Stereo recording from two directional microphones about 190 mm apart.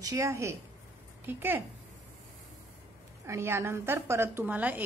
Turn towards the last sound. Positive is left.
turn(degrees=-10)  # may be behind; listen again after turning